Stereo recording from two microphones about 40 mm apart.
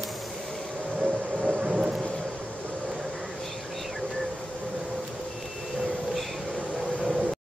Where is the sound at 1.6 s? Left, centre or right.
Centre.